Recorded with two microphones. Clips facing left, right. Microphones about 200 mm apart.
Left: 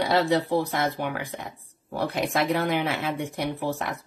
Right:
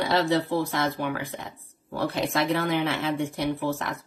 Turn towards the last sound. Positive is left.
turn(degrees=15)  # may be behind; listen again after turning